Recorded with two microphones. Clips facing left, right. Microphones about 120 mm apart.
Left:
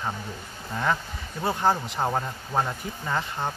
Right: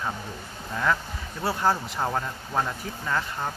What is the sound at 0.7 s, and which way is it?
Speech, 15° left (ahead or behind).